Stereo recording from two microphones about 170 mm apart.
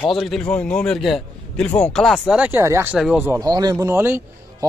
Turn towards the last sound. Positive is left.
turn(degrees=-15)  # may be behind; listen again after turning